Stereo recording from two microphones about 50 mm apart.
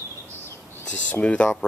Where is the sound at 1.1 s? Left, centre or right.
Left.